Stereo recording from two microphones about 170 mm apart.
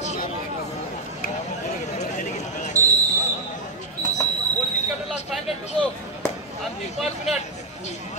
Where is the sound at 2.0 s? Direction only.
45° left (ahead or behind).